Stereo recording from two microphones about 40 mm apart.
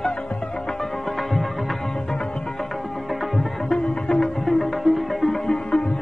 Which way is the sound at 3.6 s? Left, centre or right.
Left.